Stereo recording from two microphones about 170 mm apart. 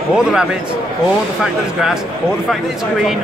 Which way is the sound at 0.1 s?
5° right (ahead or behind).